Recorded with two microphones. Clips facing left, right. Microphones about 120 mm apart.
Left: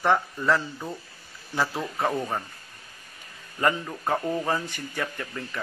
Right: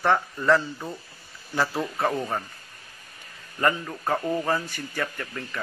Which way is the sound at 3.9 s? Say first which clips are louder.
Right 1 dB; 5° left (ahead or behind).